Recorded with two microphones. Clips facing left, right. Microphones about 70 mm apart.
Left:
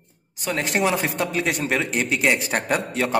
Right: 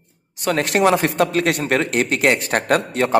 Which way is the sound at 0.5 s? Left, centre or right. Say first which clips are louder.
Right 5 dB; centre.